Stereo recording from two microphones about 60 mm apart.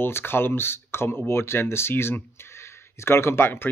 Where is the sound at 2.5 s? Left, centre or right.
Left.